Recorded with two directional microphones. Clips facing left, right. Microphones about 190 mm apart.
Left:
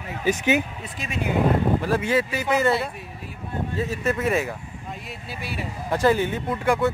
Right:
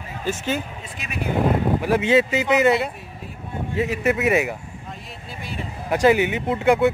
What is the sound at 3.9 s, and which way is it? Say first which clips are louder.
Speech: right 4 dB; 15° right (ahead or behind).